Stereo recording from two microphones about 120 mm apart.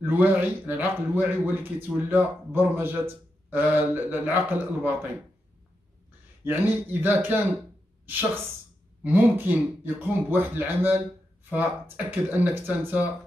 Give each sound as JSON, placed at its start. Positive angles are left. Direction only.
{"t": 0.0, "sound": "a man's voice", "side_deg": -15}
{"t": 6.4, "sound": "a man's voice", "side_deg": -15}